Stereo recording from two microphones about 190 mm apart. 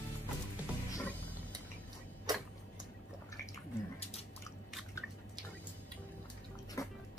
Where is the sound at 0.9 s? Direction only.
10° left (ahead or behind).